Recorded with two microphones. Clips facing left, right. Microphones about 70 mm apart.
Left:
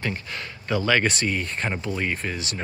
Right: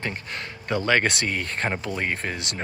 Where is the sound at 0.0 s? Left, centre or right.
Right.